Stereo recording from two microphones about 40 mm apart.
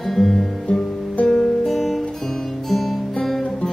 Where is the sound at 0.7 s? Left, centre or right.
Left.